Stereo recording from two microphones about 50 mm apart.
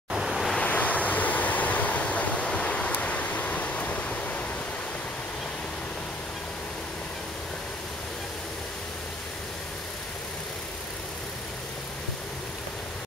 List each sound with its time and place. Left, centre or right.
0.1 s waves: centre
0.6 s waves: left